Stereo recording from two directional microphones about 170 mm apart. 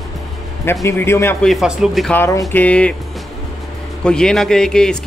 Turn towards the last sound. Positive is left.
turn(degrees=5)  # may be behind; listen again after turning